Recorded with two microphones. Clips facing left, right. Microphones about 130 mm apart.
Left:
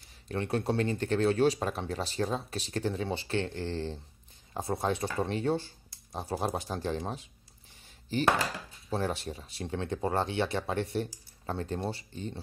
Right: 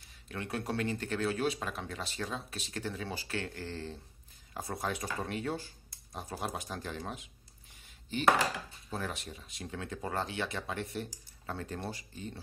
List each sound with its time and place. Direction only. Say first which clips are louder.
0.3 s speech: left 6 dB; 30° left (ahead or behind)
8.9 s speech: left 7 dB; 30° left (ahead or behind)